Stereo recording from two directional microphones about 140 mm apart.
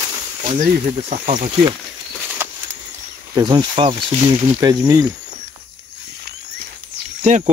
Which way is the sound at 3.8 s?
40° right (ahead or behind).